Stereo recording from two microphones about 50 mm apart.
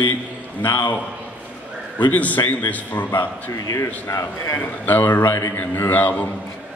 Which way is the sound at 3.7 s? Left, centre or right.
Left.